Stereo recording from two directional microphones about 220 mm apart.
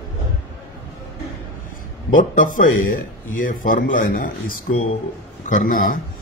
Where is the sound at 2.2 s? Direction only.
40° left (ahead or behind).